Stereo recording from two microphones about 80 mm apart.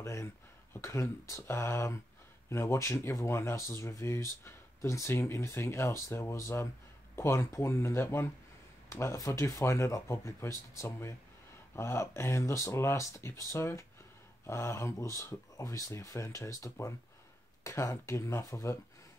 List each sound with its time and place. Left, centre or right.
0.0 s a sound: left
0.7 s speech: left
17.6 s speech: left